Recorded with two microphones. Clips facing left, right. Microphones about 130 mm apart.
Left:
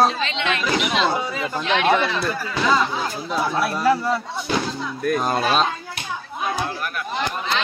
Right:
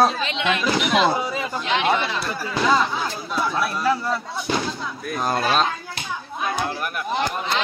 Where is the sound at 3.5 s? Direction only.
35° left (ahead or behind).